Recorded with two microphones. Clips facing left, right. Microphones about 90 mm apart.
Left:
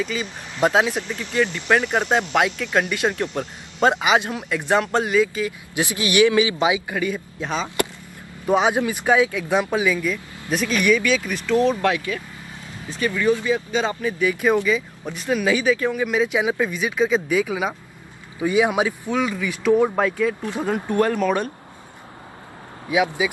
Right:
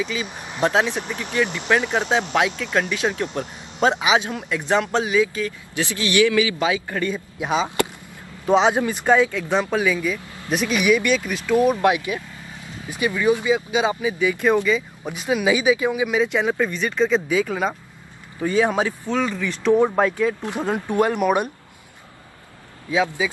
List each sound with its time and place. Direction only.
0.0 s speech: centre (ahead or behind); by 2.1 s 15° left (ahead or behind)
2.1 s speech: centre (ahead or behind)
5.8 s speech: 15° left (ahead or behind)
6.9 s speech: 5° left (ahead or behind)
7.3 s speech: 10° right (ahead or behind)
8.5 s speech: 5° left (ahead or behind)
15.0 s speech: 10° right (ahead or behind); by 19.8 s 5° left (ahead or behind)
20.0 s speech: 5° right (ahead or behind)
20.4 s speech: 15° right (ahead or behind)
22.8 s speech: 15° left (ahead or behind)